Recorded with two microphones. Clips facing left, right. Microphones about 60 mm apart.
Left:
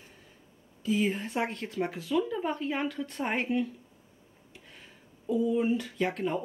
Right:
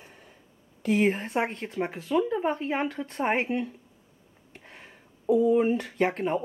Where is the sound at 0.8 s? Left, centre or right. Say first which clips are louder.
Right 4 dB; right.